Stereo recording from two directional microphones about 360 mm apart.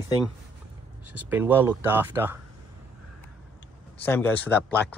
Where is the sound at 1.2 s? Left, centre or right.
Centre.